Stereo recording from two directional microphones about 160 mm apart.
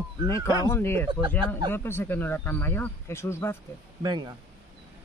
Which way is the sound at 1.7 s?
15° left (ahead or behind).